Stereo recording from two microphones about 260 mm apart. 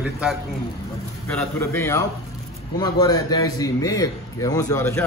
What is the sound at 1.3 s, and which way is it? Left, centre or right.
A man's voice, centre.